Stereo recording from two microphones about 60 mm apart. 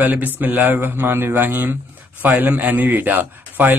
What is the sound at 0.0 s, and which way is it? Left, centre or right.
A man's voice, right.